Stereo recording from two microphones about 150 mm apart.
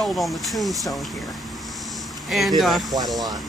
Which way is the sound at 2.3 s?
Centre (ahead or behind).